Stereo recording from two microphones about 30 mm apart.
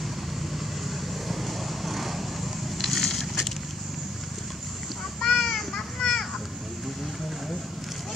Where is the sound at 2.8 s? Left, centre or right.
Centre.